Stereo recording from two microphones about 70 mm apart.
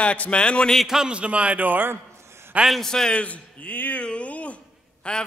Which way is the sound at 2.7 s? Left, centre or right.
Centre.